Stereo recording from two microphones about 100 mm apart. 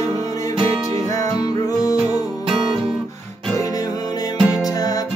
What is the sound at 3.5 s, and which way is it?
Music, 35° left (ahead or behind).